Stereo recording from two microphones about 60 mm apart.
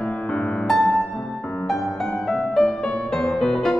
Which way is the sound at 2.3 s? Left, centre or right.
Centre.